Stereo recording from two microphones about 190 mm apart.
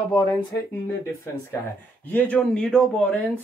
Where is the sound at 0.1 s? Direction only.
20° left (ahead or behind).